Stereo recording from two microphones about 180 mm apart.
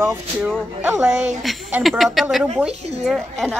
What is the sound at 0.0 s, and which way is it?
Speech, 10° right (ahead or behind).